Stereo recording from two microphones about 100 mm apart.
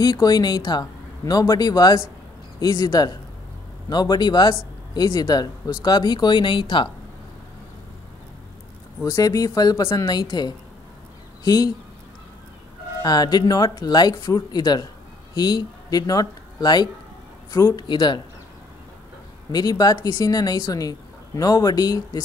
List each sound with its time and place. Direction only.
0.0 s speech: 40° left (ahead or behind)
9.0 s speech: 35° left (ahead or behind)
11.4 s speech: 40° left (ahead or behind)
13.0 s speech: 45° left (ahead or behind)
17.8 s speech: 50° left (ahead or behind)
19.5 s speech: 40° left (ahead or behind)